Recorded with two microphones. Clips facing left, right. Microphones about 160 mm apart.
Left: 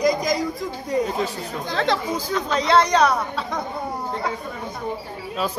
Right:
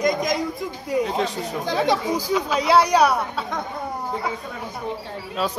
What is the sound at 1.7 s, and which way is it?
Speech, 15° right (ahead or behind).